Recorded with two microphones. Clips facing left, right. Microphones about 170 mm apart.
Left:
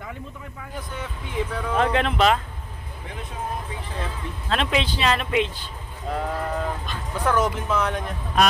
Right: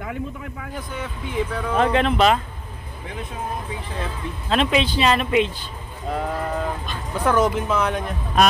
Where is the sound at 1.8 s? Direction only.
25° right (ahead or behind).